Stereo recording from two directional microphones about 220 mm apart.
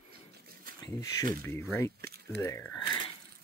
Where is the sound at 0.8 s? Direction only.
15° left (ahead or behind).